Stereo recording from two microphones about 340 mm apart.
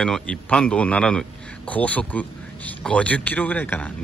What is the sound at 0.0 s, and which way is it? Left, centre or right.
A man's voice, centre.